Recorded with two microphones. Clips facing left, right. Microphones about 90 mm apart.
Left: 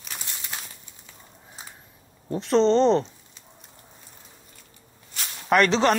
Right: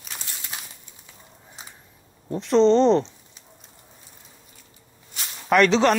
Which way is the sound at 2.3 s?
Centre (ahead or behind).